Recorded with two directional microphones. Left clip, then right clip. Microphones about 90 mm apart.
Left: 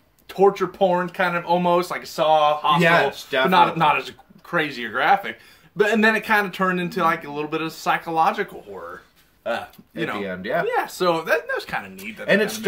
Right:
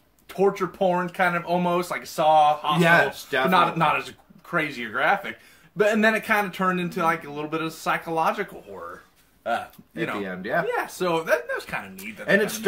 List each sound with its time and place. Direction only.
0.3 s speech: 20° left (ahead or behind)
2.8 s speech: 40° right (ahead or behind)
3.4 s speech: 20° left (ahead or behind)
10.2 s speech: 35° right (ahead or behind)
10.7 s speech: 25° left (ahead or behind)